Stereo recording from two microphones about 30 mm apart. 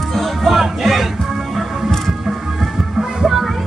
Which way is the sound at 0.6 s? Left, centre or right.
Centre.